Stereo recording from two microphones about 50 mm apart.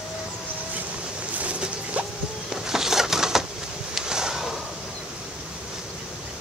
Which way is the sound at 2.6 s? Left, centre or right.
Centre.